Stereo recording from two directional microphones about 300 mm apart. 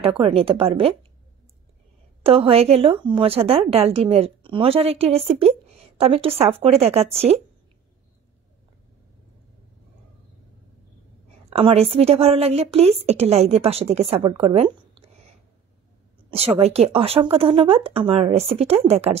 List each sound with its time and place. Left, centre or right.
0.2 s a woman's voice: centre
2.2 s a woman's voice: centre
11.5 s a woman's voice: centre